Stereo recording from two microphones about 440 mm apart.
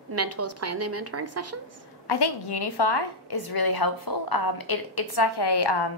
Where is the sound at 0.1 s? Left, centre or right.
Right.